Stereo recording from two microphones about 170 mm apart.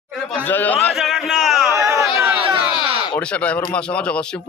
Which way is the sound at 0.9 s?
Centre (ahead or behind).